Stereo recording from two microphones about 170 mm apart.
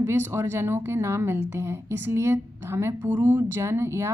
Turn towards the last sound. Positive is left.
turn(degrees=-15)  # may be behind; listen again after turning